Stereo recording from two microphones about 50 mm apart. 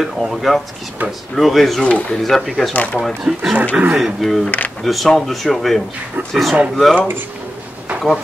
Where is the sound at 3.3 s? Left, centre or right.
Centre.